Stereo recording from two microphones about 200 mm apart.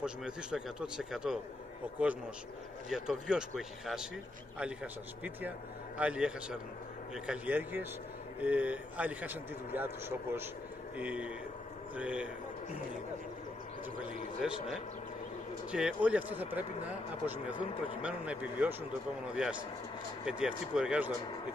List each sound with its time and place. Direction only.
0.0 s a man's voice: 5° right (ahead or behind)
2.9 s a man's voice: centre (ahead or behind)
5.9 s a man's voice: 5° right (ahead or behind)
14.4 s a man's voice: centre (ahead or behind)
15.7 s a man's voice: 5° right (ahead or behind)
17.6 s speech: 25° left (ahead or behind)
18.0 s a man's voice: 5° right (ahead or behind)